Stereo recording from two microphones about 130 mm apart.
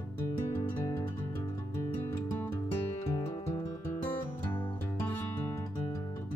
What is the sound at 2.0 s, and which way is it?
Music, 15° left (ahead or behind).